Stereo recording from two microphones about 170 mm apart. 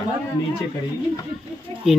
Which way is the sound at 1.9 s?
Centre (ahead or behind).